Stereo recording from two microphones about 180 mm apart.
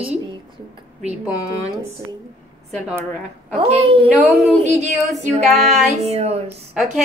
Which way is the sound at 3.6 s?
35° right (ahead or behind).